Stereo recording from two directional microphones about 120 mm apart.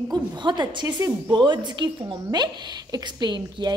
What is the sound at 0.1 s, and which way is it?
A woman's voice, 40° right (ahead or behind).